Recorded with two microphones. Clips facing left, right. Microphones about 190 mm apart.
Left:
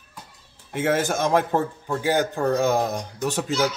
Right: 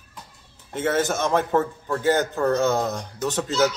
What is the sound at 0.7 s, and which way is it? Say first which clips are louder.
A man's voice: even; 10° left (ahead or behind).